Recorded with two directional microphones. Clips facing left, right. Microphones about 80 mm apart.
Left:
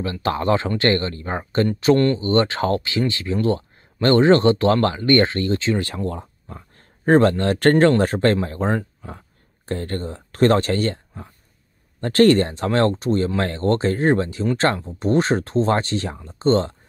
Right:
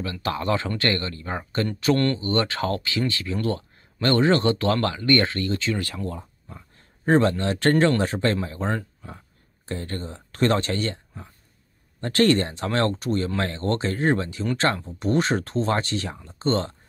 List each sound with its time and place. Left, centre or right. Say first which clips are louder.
0.0 s speech: left 5 dB; left
6.0 s speech: left 5 dB; left
9.7 s speech: left 5 dB; left